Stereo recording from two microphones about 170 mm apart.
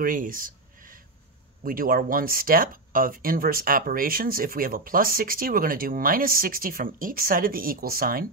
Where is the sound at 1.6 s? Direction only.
55° right (ahead or behind).